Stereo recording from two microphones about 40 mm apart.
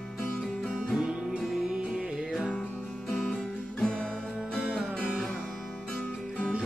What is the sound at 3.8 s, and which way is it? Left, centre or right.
Music, left.